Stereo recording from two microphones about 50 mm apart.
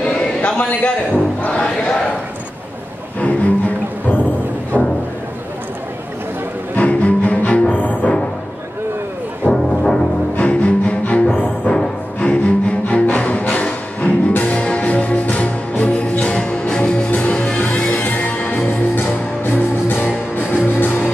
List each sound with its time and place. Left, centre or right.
0.0 s a sound: left
1.5 s battle cry: left
3.2 s music: left
6.8 s music: left
9.5 s music: centre
10.3 s music: left
17.6 s music: left